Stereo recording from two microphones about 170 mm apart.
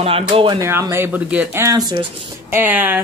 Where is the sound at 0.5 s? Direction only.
20° right (ahead or behind).